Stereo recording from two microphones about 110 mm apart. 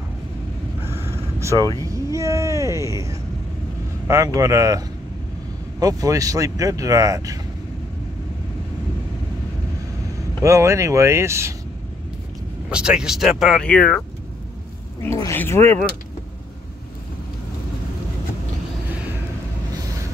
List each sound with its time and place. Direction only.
0.8 s a sound: 20° right (ahead or behind)
4.1 s speech: 30° right (ahead or behind)
10.4 s speech: 30° right (ahead or behind)
12.6 s speech: 10° right (ahead or behind)
13.6 s speech: 10° left (ahead or behind)
15.3 s speech: 20° left (ahead or behind)